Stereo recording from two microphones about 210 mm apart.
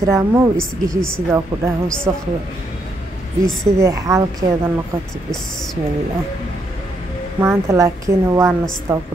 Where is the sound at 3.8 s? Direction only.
15° right (ahead or behind).